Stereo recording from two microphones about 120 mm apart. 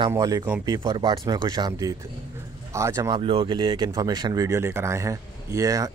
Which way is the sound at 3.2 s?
50° right (ahead or behind).